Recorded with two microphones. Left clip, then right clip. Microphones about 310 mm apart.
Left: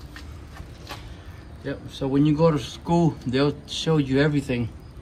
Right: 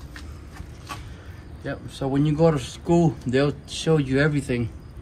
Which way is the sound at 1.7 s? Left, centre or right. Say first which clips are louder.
Even; centre.